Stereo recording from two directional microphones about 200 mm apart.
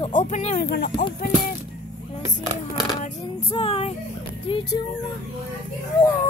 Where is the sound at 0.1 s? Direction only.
35° left (ahead or behind).